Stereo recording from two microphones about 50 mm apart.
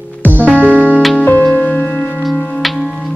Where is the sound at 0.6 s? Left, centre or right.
Left.